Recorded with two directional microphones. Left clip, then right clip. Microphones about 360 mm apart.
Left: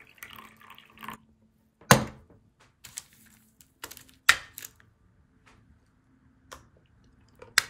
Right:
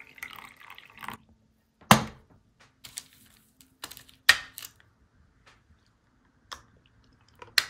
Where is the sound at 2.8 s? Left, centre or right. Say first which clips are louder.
Right 1 dB; centre.